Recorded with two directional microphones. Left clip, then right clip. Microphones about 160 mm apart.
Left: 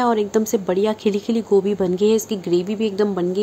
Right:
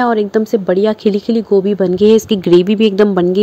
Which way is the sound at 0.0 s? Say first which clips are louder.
Right 5 dB; 25° right (ahead or behind).